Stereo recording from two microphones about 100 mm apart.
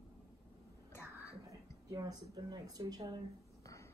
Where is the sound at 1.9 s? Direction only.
40° right (ahead or behind).